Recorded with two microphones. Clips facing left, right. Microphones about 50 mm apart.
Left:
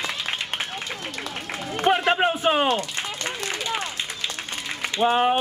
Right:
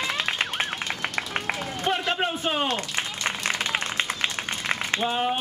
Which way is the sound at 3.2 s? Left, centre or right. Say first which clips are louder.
Right 4 dB; right.